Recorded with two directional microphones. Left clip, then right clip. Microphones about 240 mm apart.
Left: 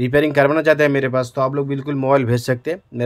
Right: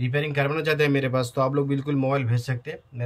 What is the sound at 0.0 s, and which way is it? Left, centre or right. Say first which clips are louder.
Speech: left 11 dB; centre.